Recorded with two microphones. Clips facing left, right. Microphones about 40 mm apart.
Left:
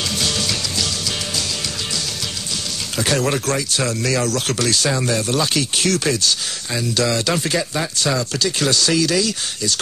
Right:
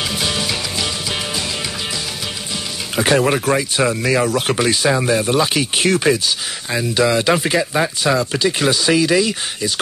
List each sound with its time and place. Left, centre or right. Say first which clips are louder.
0.1 s music: right 1 dB; centre
3.0 s speech: right 5 dB; right